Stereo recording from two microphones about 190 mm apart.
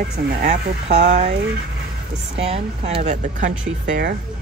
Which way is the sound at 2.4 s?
35° right (ahead or behind).